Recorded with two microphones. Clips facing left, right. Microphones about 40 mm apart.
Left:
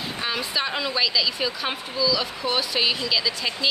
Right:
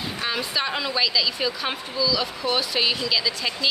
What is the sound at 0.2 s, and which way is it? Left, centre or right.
A woman's voice, centre.